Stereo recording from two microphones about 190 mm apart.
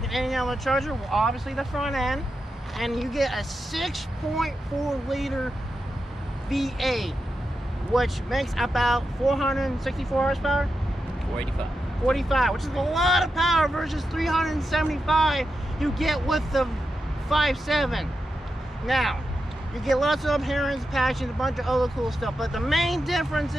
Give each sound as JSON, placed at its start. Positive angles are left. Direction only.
{"t": 0.1, "sound": "speech", "side_deg": 0}
{"t": 6.5, "sound": "speech", "side_deg": 0}
{"t": 12.1, "sound": "speech", "side_deg": 0}